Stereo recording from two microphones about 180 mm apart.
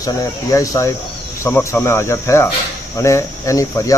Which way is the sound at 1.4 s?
15° left (ahead or behind).